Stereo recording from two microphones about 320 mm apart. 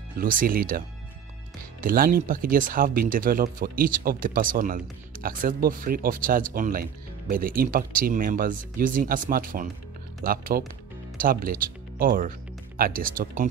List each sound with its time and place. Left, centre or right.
0.2 s speech: right